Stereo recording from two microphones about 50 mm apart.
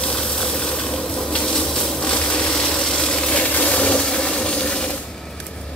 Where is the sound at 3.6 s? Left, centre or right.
Left.